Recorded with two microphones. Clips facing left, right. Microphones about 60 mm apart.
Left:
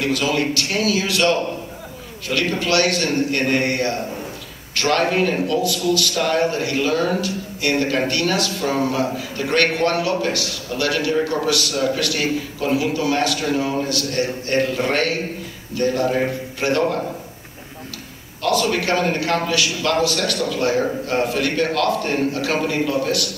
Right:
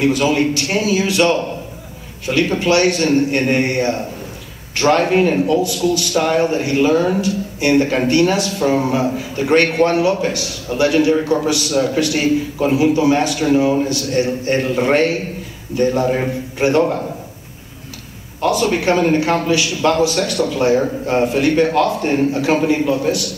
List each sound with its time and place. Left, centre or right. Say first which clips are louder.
0.0 s a man's voice: right 5 dB; right
18.4 s a man's voice: right 3 dB; right